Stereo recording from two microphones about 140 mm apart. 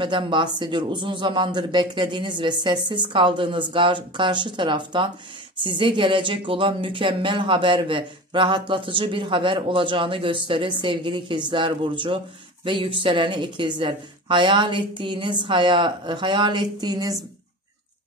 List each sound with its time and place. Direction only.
0.0 s speech: 35° right (ahead or behind)